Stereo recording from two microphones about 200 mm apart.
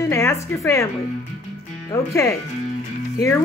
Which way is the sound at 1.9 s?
15° left (ahead or behind).